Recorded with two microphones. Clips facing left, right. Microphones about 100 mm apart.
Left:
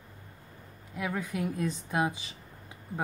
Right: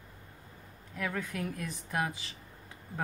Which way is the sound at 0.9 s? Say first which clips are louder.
Left 3 dB; 15° left (ahead or behind).